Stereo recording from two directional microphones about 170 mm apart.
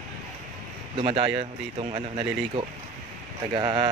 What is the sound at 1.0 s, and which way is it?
Speech, 35° right (ahead or behind).